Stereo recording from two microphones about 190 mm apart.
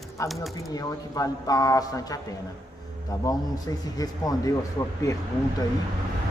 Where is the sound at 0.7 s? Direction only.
20° left (ahead or behind).